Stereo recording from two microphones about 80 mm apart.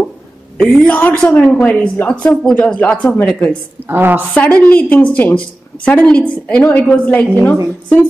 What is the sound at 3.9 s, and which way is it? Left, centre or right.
Speech, right.